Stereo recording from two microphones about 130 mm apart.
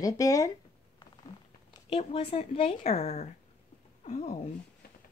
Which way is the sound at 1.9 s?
45° left (ahead or behind).